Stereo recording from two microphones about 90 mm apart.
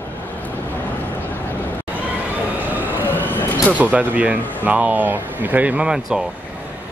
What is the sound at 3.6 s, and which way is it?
Speech, 15° right (ahead or behind).